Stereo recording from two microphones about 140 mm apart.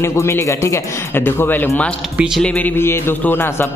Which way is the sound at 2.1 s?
5° right (ahead or behind).